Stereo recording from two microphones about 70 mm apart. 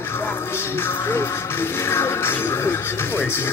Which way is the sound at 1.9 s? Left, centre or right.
Left.